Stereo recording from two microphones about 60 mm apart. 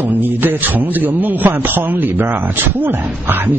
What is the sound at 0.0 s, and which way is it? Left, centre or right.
A man's voice, right.